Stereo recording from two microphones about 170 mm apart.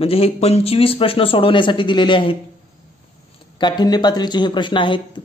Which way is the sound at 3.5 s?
25° left (ahead or behind).